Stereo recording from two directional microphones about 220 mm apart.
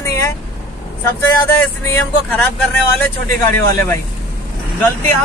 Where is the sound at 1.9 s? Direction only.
5° left (ahead or behind).